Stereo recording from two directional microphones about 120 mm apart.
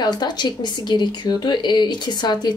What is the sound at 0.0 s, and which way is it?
A woman's voice, 35° left (ahead or behind).